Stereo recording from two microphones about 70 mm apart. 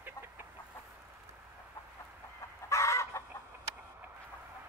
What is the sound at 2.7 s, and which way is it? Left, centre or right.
Chicken, left.